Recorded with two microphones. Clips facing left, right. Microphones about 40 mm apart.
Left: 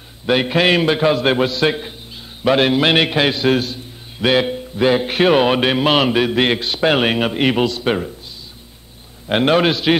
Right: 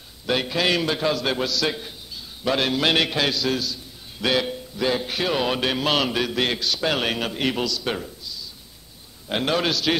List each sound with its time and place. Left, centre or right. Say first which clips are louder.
0.3 s a man's voice: left 7 dB; left
4.2 s speech: left 7 dB; left